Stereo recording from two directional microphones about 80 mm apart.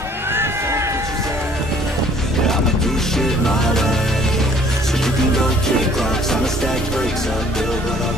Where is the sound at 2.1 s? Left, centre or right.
Centre.